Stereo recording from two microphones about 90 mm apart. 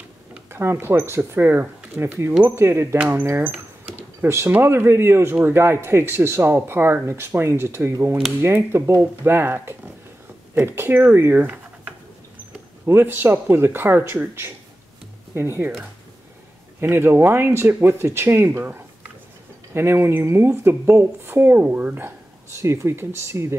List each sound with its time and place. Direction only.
0.5 s speech: 25° right (ahead or behind)
11.4 s a sound: 15° right (ahead or behind)
12.8 s speech: 25° right (ahead or behind)
16.8 s speech: 25° right (ahead or behind)